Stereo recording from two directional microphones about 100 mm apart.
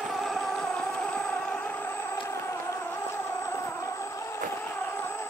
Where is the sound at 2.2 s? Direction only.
25° left (ahead or behind).